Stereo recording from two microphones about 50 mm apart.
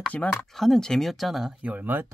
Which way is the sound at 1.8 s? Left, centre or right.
Right.